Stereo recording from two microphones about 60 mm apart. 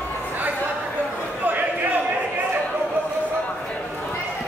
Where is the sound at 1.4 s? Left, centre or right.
Right.